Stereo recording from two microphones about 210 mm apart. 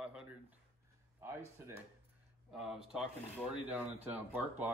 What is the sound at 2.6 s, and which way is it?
Speech, 5° right (ahead or behind).